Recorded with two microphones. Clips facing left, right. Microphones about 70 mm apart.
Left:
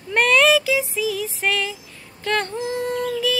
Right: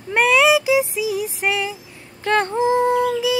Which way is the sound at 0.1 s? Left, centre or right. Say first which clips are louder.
Right 1 dB; centre.